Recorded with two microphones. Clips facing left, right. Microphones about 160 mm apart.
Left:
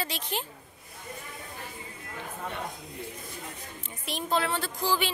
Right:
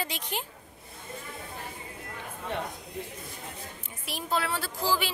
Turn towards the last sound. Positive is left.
turn(degrees=-5)  # may be behind; listen again after turning